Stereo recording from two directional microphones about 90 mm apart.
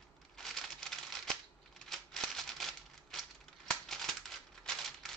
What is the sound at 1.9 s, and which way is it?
Typewriter, 5° left (ahead or behind).